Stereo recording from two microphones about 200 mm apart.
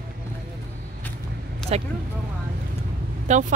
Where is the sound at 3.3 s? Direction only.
35° right (ahead or behind).